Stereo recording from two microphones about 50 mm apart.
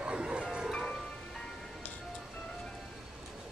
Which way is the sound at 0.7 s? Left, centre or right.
Centre.